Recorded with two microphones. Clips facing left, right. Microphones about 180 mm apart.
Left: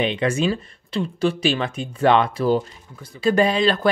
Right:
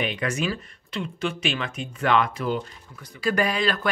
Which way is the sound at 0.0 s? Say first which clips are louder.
Left 6 dB; 25° left (ahead or behind).